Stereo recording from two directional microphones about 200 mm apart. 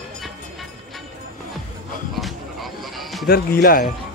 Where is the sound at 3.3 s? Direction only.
50° left (ahead or behind).